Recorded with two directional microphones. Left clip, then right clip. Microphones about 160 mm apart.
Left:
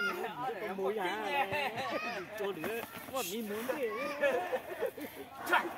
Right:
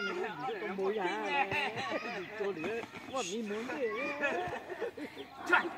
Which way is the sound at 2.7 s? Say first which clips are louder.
Even; 55° right (ahead or behind).